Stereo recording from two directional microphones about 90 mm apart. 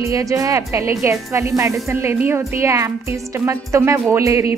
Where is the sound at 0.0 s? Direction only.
35° right (ahead or behind).